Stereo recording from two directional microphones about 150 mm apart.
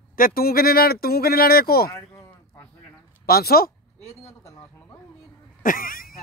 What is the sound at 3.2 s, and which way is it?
Speech, 90° left.